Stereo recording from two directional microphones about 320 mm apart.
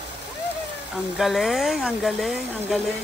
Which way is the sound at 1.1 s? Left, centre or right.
Centre.